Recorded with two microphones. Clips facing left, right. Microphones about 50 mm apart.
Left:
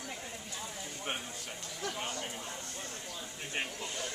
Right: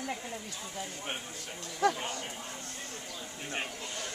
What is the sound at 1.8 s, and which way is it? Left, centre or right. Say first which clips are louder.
Speech: right 12 dB; right.